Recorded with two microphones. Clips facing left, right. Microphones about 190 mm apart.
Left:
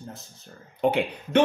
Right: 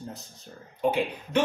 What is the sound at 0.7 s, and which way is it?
Speech, 65° left (ahead or behind).